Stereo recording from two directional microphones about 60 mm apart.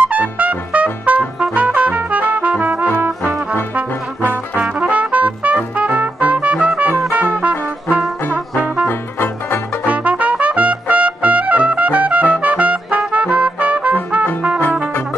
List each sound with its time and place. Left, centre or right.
0.0 s brass instrument: right
1.0 s music: right
4.6 s trumpet: right
6.8 s music: right
9.8 s trumpet: right
14.6 s brass instrument: left